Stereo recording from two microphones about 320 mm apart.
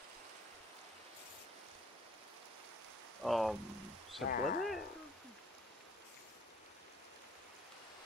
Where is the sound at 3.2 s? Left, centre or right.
Centre.